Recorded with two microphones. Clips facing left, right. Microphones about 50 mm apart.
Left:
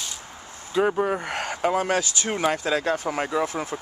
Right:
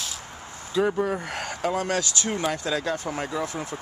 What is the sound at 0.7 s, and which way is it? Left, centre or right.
Speech, centre.